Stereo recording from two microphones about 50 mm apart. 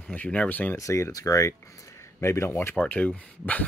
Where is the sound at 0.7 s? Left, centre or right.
Left.